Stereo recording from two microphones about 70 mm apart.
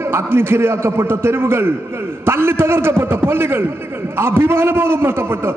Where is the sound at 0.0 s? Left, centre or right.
Right.